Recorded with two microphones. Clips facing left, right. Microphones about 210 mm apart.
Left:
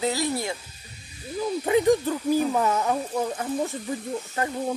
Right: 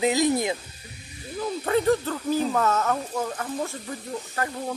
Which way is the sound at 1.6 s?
15° left (ahead or behind).